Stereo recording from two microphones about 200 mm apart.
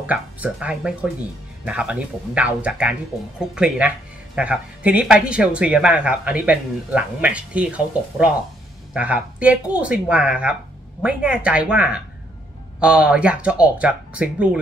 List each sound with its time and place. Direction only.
0.0 s speech: 5° right (ahead or behind)